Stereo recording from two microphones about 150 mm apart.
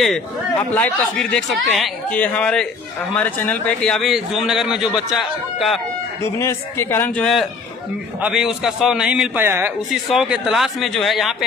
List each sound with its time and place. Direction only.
0.0 s speech: 5° left (ahead or behind)
6.2 s a man's voice: 20° left (ahead or behind)
8.2 s speech: 5° right (ahead or behind)
10.0 s speech: 5° right (ahead or behind)